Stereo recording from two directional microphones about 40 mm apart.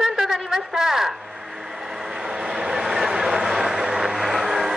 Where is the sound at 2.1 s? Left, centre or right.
Centre.